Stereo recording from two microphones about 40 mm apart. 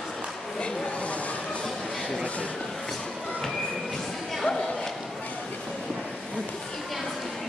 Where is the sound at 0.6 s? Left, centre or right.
Left.